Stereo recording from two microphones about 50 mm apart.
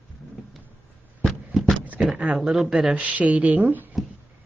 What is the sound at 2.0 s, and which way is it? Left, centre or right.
A woman's voice, right.